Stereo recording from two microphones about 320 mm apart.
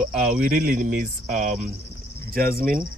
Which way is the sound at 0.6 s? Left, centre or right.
Right.